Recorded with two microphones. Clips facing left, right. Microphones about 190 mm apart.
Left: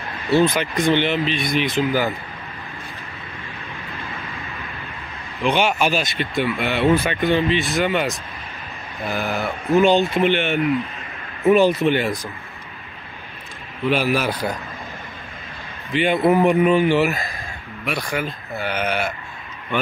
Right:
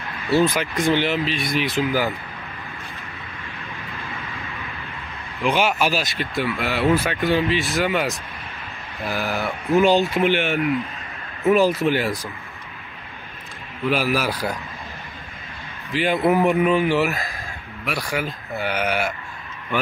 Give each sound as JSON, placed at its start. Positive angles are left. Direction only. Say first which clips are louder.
{"t": 0.4, "sound": "speech", "louder": "left 2 dB", "side_deg": -5}
{"t": 5.4, "sound": "speech", "louder": "left 1 dB", "side_deg": -5}
{"t": 13.8, "sound": "speech", "louder": "left 2 dB", "side_deg": -5}
{"t": 15.9, "sound": "speech", "louder": "left 2 dB", "side_deg": 0}